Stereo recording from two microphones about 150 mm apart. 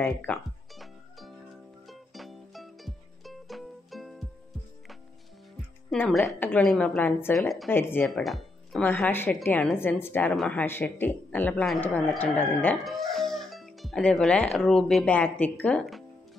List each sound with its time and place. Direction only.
0.0 s a woman's voice: 10° left (ahead or behind)
1.9 s music: centre (ahead or behind)
5.9 s a woman's voice: 5° left (ahead or behind)
7.3 s speech: centre (ahead or behind)
7.7 s a woman's voice: 15° left (ahead or behind)
8.1 s a woman's voice: centre (ahead or behind)
10.3 s speech: centre (ahead or behind)
10.6 s a woman's voice: 15° left (ahead or behind)